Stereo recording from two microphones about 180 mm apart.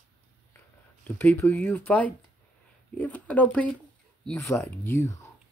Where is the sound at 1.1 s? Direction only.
15° left (ahead or behind).